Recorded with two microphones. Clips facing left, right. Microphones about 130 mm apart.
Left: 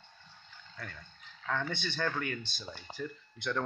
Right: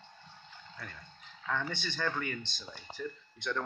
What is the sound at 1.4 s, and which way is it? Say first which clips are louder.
Speech: left 1 dB; centre (ahead or behind).